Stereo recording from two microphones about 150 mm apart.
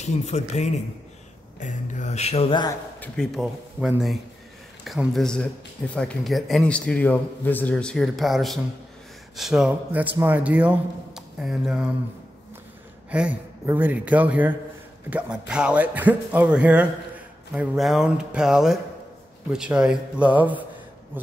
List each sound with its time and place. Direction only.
0.0 s speech: 50° left (ahead or behind)
3.0 s a man's voice: 5° left (ahead or behind)
13.1 s a man's voice: 10° right (ahead or behind)